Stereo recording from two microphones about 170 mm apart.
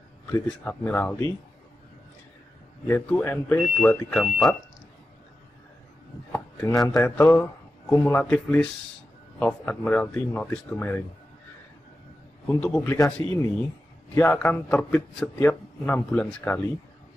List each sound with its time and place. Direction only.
0.3 s a man's voice: 10° left (ahead or behind)
2.9 s a man's voice: 10° left (ahead or behind)
6.3 s chopping: 20° left (ahead or behind)
6.9 s a man's voice: 15° left (ahead or behind)
12.4 s a man's voice: 10° left (ahead or behind)